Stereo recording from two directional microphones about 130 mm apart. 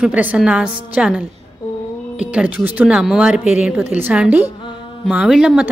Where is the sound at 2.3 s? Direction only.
10° right (ahead or behind).